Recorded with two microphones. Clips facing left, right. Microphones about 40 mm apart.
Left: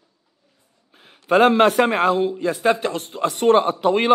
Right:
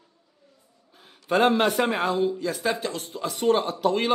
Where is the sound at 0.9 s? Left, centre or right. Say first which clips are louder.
Left 6 dB; left.